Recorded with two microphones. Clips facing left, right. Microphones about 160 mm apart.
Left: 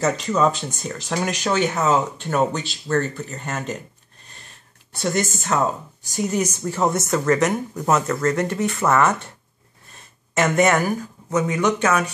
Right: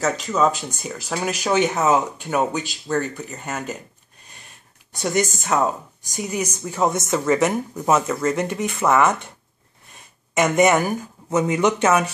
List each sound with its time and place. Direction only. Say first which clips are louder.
0.0 s speech: left 1 dB; 5° right (ahead or behind)
4.9 s speech: right 1 dB; 15° right (ahead or behind)
9.9 s a sound: right 1 dB; 15° right (ahead or behind)
11.2 s speech: right 1 dB; 20° right (ahead or behind)